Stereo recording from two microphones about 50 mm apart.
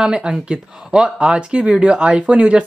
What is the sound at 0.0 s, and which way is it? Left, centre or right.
Speech, centre.